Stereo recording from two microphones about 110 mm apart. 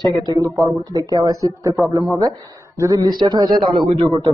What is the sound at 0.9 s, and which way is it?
A man's voice, 30° right (ahead or behind).